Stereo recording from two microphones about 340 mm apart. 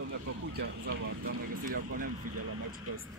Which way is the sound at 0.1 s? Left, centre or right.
Right.